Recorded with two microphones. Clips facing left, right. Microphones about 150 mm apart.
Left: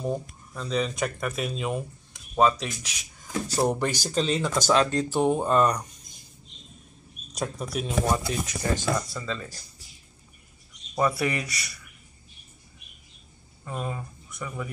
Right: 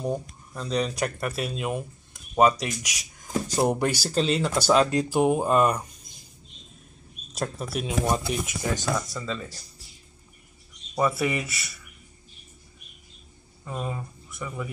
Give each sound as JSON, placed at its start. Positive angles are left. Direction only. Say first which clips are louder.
{"t": 0.1, "sound": "speech", "louder": "right 1 dB", "side_deg": -5}
{"t": 7.3, "sound": "speech", "louder": "even", "side_deg": -5}
{"t": 8.1, "sound": "speech", "louder": "right 1 dB", "side_deg": -15}
{"t": 9.0, "sound": "speech", "louder": "right 1 dB", "side_deg": 0}
{"t": 11.0, "sound": "speech", "louder": "right 1 dB", "side_deg": 0}
{"t": 13.7, "sound": "speech", "louder": "even", "side_deg": 0}